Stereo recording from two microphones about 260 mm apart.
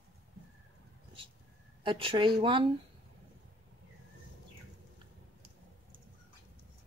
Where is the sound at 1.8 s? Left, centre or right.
Centre.